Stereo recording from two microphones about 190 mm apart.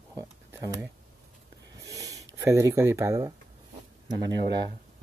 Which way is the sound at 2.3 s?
15° right (ahead or behind).